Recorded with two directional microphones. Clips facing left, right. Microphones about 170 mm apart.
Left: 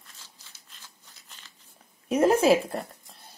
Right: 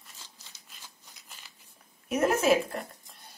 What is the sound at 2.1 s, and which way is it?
Speech, 30° left (ahead or behind).